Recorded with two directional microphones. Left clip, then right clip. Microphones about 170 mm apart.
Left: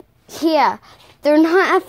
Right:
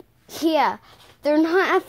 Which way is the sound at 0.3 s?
Centre (ahead or behind).